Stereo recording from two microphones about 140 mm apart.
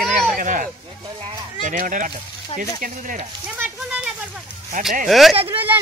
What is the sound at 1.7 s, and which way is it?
Speech, 70° right (ahead or behind).